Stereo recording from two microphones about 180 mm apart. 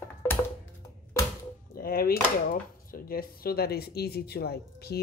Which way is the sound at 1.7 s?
55° left (ahead or behind).